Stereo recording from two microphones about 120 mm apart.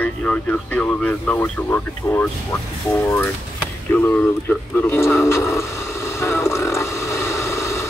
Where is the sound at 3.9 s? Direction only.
15° left (ahead or behind).